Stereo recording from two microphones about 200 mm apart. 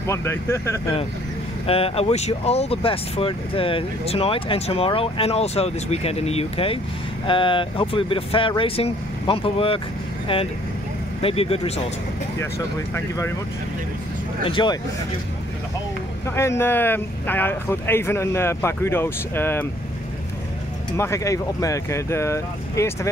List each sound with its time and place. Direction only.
0.0 s speech: 15° left (ahead or behind)
1.7 s speech: 30° left (ahead or behind)
12.4 s speech: 15° left (ahead or behind)
14.4 s speech: 25° left (ahead or behind)
16.3 s speech: 15° left (ahead or behind)
20.9 s speech: 15° left (ahead or behind)